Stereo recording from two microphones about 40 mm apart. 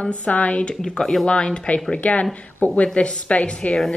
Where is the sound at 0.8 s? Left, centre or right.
Centre.